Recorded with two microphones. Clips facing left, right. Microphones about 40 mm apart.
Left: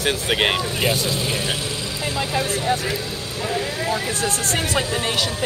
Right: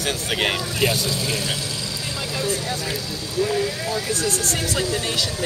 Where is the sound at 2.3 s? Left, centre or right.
Left.